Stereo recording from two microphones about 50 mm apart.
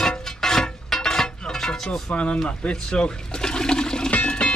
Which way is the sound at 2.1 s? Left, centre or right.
Left.